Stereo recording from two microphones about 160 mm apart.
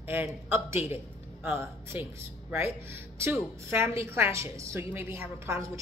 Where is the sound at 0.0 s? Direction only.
15° right (ahead or behind).